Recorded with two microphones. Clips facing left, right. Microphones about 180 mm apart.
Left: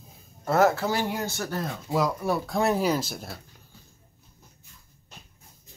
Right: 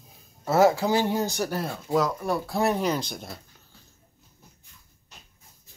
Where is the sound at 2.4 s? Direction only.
Centre (ahead or behind).